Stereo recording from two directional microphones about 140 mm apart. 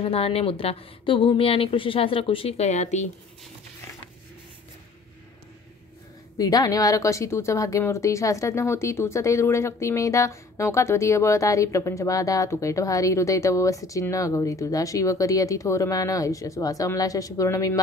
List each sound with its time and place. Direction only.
0.0 s a woman's voice: 45° left (ahead or behind)
6.3 s a woman's voice: 25° left (ahead or behind)